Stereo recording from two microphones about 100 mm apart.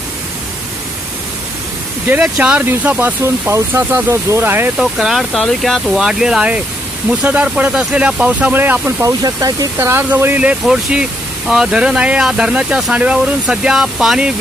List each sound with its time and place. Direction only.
2.0 s speech: 15° right (ahead or behind)
4.7 s speech: centre (ahead or behind); by 8.9 s 20° right (ahead or behind)
9.0 s speech: 35° right (ahead or behind)
9.8 s speech: 25° right (ahead or behind); by 14.3 s 5° right (ahead or behind)